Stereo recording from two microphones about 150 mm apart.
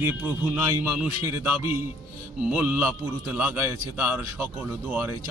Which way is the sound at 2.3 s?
10° right (ahead or behind).